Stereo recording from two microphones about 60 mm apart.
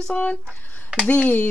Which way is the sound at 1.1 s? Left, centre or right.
Left.